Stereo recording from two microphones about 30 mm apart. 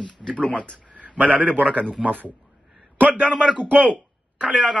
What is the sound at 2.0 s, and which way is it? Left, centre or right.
Speech, right.